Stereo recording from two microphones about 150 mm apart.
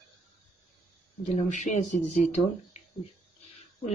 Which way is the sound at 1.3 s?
55° left (ahead or behind).